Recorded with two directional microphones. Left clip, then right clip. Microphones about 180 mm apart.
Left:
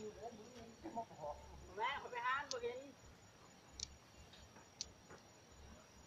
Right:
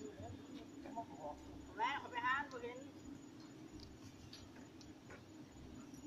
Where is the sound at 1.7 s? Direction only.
45° right (ahead or behind).